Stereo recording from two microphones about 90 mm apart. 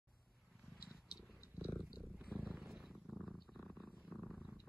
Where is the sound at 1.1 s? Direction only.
55° left (ahead or behind).